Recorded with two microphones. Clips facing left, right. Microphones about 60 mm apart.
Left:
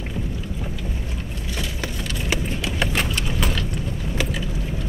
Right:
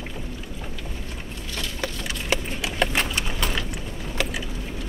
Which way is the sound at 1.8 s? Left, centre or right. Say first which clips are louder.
Left 1 dB; centre.